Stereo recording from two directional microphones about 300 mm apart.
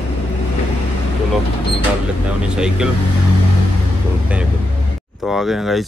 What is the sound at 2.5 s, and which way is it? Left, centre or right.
Speech, centre.